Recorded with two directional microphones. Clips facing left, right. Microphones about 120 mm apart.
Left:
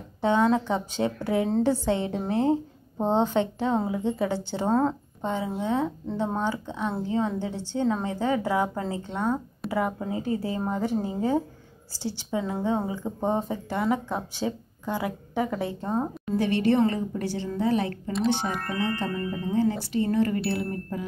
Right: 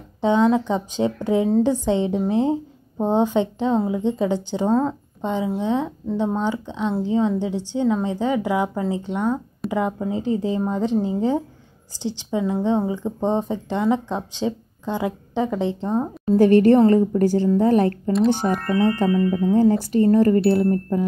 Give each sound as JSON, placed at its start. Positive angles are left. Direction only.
{"t": 0.2, "sound": "a woman's voice", "side_deg": -15}
{"t": 4.6, "sound": "speech", "side_deg": 10}
{"t": 5.2, "sound": "a woman's voice", "side_deg": -15}
{"t": 16.3, "sound": "speech", "side_deg": -45}
{"t": 18.8, "sound": "speech", "side_deg": -60}
{"t": 19.5, "sound": "speech", "side_deg": -40}